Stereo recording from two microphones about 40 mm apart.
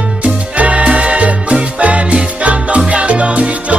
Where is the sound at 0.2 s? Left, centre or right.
Right.